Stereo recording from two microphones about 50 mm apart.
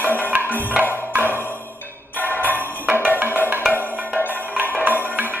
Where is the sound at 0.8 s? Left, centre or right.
Right.